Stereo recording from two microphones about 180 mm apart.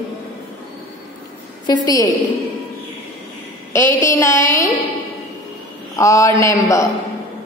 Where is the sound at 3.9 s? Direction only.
45° left (ahead or behind).